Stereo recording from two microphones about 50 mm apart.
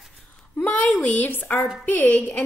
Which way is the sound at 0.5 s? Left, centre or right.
Left.